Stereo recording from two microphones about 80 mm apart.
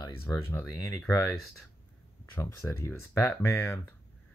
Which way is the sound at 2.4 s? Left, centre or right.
Left.